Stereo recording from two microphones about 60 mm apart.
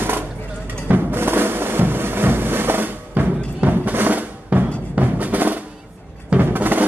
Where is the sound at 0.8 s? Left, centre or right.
Right.